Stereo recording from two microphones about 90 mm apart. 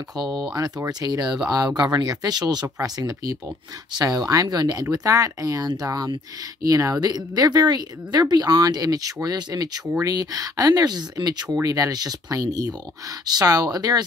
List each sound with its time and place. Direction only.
0.3 s speech: 45° right (ahead or behind)